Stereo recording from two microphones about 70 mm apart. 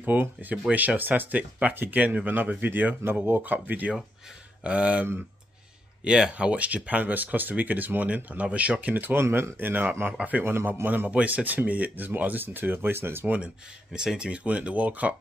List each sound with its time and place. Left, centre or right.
0.0 s speech: right
6.0 s speech: centre
10.4 s a man's voice: right
11.1 s speech: centre
13.9 s speech: centre